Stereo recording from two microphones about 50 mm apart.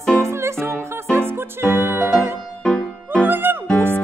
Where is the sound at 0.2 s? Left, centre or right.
Right.